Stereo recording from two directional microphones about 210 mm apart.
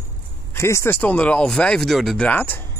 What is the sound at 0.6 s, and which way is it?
Speech, 15° left (ahead or behind).